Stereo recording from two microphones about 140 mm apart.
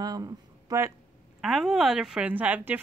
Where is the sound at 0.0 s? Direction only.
25° right (ahead or behind).